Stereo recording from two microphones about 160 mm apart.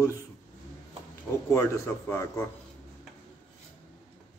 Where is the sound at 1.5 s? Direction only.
15° left (ahead or behind).